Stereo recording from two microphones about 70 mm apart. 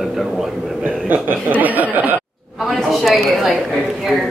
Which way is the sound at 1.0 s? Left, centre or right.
Right.